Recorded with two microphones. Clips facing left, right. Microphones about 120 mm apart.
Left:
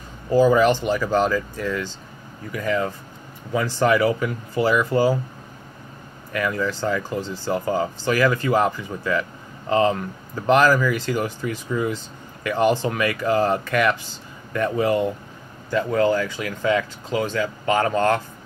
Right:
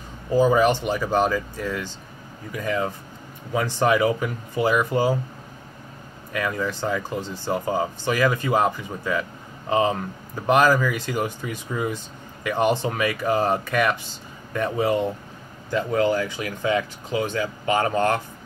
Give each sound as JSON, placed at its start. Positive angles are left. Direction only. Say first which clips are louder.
{"t": 0.3, "sound": "speech", "louder": "left 2 dB", "side_deg": -20}
{"t": 6.3, "sound": "speech", "louder": "left 2 dB", "side_deg": -20}